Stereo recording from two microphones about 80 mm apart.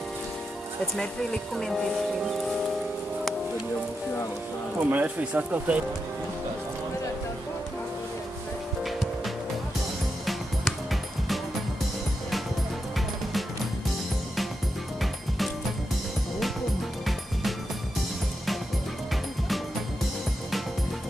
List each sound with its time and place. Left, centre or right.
4.7 s speech: centre
8.8 s music: centre
15.0 s music: centre
17.0 s music: centre